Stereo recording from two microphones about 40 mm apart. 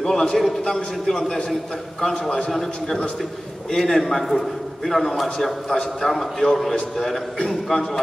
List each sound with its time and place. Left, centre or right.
0.0 s a man's voice: centre
2.2 s a man's voice: left
2.5 s a man's voice: centre